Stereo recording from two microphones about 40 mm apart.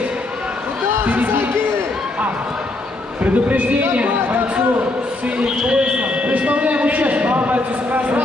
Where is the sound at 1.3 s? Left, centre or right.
Right.